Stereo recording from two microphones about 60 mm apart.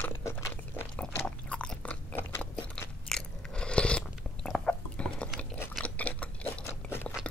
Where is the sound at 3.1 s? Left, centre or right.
Centre.